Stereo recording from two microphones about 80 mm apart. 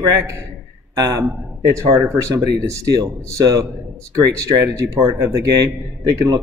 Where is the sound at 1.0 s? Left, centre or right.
Right.